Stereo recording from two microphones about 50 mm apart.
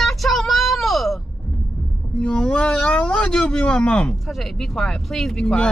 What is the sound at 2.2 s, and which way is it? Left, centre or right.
Speech, left.